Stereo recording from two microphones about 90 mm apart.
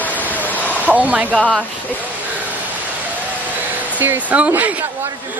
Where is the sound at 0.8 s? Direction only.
15° right (ahead or behind).